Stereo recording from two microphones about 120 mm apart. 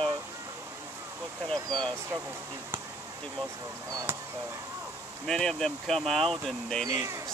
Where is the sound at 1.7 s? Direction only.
40° right (ahead or behind).